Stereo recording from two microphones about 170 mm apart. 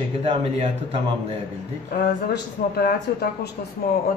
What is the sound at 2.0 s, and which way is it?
Speech, 65° left (ahead or behind).